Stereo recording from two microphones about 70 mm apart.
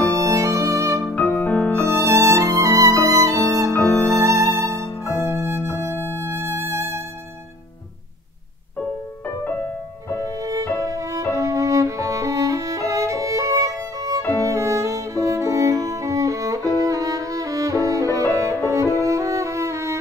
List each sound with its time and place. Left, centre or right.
0.0 s music: right
1.1 s music: left
1.8 s music: right
9.4 s music: left
10.1 s music: right
11.3 s violin: right
18.7 s music: right